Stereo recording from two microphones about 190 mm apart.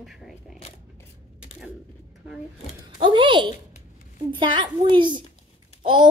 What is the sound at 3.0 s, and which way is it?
A child's voice, 25° right (ahead or behind).